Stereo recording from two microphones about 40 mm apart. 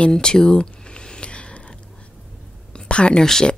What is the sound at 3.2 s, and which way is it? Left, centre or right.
Speech, centre.